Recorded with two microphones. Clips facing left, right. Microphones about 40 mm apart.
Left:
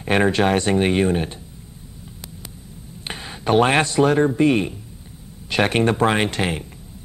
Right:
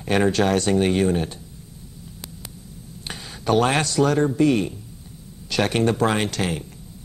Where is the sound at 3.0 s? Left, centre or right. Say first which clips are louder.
Left 4 dB; left.